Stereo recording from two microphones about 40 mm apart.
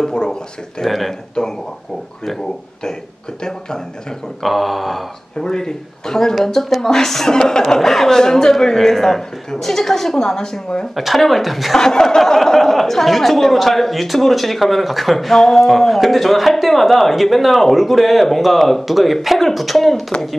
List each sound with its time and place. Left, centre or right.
0.0 s a sound: centre
0.8 s speech: centre
4.4 s speech: centre
5.4 s a man's voice: centre
11.1 s speech: centre
11.7 s a man's voice: centre